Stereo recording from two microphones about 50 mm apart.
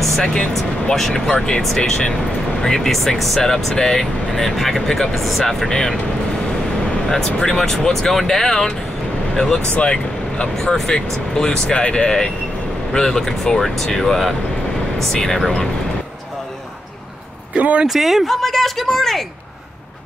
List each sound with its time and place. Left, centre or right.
0.0 s speech: centre
2.6 s speech: centre
5.7 s speech: centre
7.1 s speech: centre
9.8 s speech: centre
10.5 s speech: centre
17.6 s speech: right
17.8 s speech: centre